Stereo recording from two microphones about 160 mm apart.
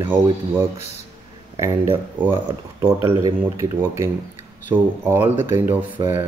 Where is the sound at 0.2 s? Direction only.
15° right (ahead or behind).